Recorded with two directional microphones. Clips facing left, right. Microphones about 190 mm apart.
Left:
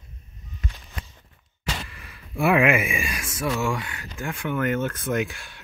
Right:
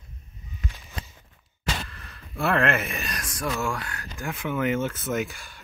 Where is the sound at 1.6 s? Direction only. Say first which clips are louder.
Right 1 dB; 5° left (ahead or behind).